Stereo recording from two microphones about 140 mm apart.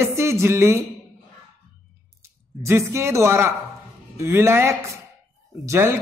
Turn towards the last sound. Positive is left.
turn(degrees=-20)  # may be behind; listen again after turning